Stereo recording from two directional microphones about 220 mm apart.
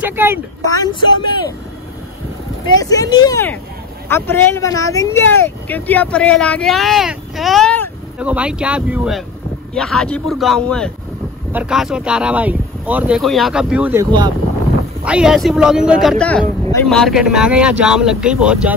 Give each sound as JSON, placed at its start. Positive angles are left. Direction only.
{"t": 0.0, "sound": "speech", "side_deg": -10}
{"t": 0.7, "sound": "speech", "side_deg": 15}
{"t": 2.8, "sound": "speech", "side_deg": 15}
{"t": 8.2, "sound": "speech", "side_deg": -5}
{"t": 15.0, "sound": "speech", "side_deg": -5}